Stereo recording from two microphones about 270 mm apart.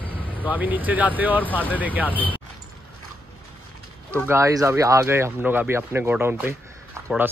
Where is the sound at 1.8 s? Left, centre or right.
Centre.